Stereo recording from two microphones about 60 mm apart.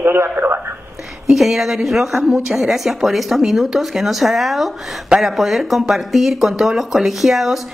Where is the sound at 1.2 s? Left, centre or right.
Centre.